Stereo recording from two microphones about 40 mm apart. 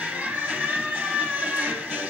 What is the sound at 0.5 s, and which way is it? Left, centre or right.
Music, right.